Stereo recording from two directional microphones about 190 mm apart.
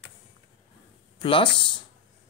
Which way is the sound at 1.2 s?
25° left (ahead or behind).